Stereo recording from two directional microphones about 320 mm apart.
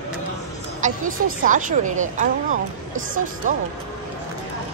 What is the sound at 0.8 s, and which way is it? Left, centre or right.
Speech, right.